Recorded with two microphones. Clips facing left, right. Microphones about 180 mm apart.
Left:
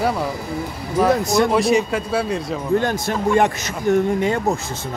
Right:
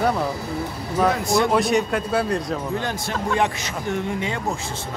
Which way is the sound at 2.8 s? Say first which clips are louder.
Left 6 dB; 45° left (ahead or behind).